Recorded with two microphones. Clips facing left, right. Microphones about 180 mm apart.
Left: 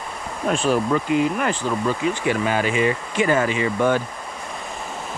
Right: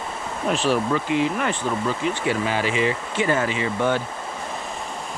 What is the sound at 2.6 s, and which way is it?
Speech, 50° left (ahead or behind).